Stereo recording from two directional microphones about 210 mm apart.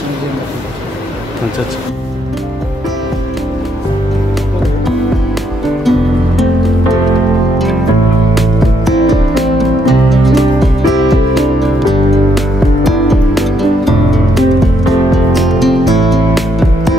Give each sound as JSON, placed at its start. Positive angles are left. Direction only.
{"t": 5.9, "sound": "music", "side_deg": 0}
{"t": 8.4, "sound": "music", "side_deg": 0}